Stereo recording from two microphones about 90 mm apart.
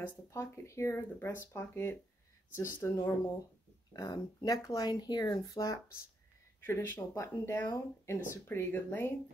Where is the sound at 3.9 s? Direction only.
45° left (ahead or behind).